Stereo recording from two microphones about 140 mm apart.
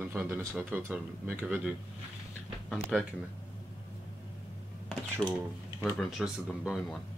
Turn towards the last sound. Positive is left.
turn(degrees=0)  # may be behind; listen again after turning